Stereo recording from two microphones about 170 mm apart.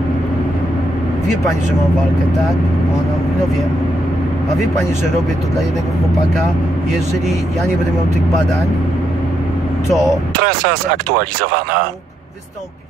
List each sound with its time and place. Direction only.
10.3 s speech: 55° right (ahead or behind)